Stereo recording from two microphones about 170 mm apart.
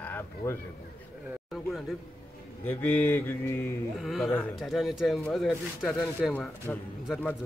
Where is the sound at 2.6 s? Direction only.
10° left (ahead or behind).